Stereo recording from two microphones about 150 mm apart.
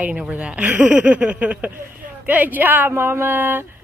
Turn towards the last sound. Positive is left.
turn(degrees=-15)  # may be behind; listen again after turning